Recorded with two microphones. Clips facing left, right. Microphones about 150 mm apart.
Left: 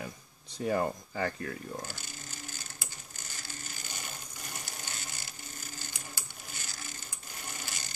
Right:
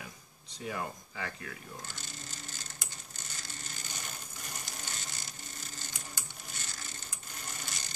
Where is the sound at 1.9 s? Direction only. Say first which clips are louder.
Left 2 dB; 5° left (ahead or behind).